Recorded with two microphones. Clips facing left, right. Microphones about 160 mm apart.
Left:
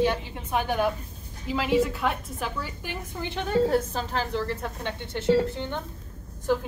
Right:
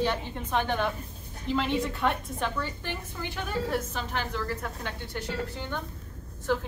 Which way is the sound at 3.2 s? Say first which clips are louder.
Left 9 dB; 25° left (ahead or behind).